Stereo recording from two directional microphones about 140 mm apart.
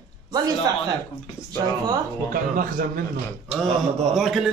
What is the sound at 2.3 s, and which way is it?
Speech, 90° right.